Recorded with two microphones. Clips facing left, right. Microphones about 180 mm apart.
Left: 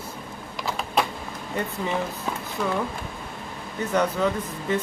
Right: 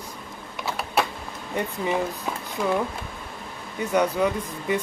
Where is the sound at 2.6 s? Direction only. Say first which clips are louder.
Right 2 dB; 10° right (ahead or behind).